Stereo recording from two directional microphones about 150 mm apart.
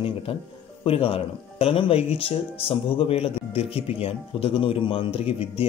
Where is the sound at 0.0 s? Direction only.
35° left (ahead or behind).